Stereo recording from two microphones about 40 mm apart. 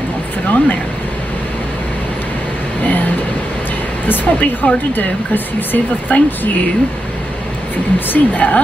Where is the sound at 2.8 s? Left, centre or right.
Left.